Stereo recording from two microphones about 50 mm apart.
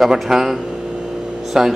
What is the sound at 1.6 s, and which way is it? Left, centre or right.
Speech, centre.